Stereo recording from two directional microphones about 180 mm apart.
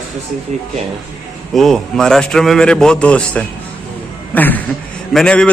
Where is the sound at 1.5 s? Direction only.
Centre (ahead or behind).